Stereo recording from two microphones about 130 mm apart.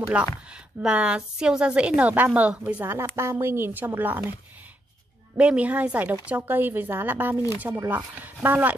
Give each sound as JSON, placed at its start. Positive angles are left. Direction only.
{"t": 0.2, "sound": "a woman's voice", "side_deg": -10}
{"t": 5.4, "sound": "a woman's voice", "side_deg": -10}